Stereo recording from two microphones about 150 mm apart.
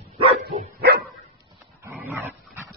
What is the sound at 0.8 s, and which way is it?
Dog, 90° right.